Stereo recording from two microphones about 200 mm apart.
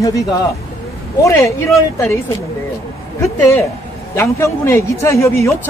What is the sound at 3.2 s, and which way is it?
Speech, 10° left (ahead or behind).